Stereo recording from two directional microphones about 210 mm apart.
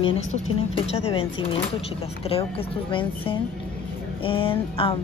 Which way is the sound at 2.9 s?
25° left (ahead or behind).